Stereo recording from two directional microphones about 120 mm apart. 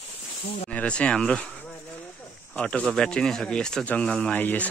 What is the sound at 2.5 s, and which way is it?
Speech, 10° left (ahead or behind).